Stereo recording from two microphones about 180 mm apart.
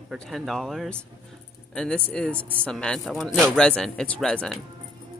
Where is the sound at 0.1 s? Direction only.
Centre (ahead or behind).